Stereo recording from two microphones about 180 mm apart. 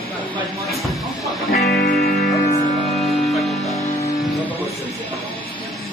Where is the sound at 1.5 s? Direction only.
60° left (ahead or behind).